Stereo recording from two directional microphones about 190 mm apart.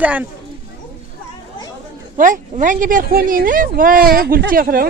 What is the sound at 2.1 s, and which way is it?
Speech, 45° right (ahead or behind).